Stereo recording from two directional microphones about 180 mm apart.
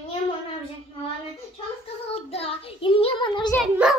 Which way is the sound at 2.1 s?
35° left (ahead or behind).